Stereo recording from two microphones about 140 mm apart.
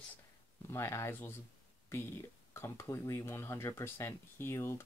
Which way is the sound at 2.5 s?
20° left (ahead or behind).